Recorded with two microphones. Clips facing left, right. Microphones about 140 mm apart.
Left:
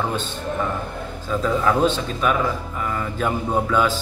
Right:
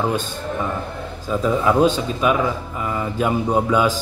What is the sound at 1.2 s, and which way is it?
A man's voice, 15° right (ahead or behind).